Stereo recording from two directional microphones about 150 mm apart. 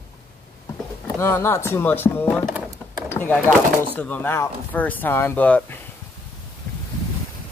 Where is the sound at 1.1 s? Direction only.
15° left (ahead or behind).